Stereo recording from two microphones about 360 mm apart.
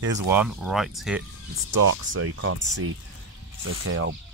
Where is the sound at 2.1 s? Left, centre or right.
Right.